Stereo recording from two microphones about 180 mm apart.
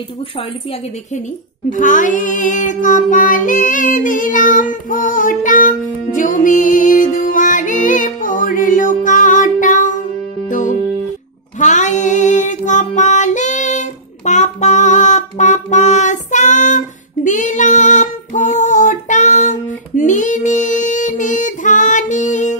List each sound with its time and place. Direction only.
1.7 s a sound: 45° left (ahead or behind)
10.5 s music: 45° left (ahead or behind)
11.6 s female singing: 40° left (ahead or behind)